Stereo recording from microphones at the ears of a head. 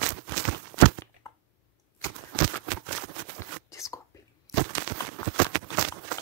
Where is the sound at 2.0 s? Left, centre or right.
Right.